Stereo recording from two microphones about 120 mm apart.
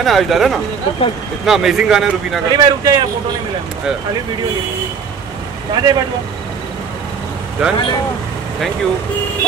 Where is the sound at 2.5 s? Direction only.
35° right (ahead or behind).